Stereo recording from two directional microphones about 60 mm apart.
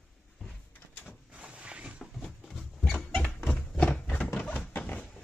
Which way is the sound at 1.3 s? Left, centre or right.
Centre.